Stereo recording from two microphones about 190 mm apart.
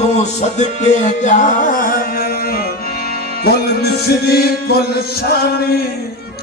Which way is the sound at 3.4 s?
55° left (ahead or behind).